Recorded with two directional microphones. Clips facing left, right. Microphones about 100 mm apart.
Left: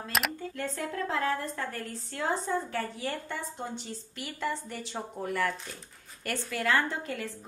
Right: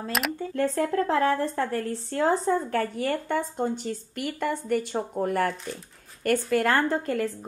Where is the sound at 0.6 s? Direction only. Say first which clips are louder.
Right 10 dB; 45° right (ahead or behind).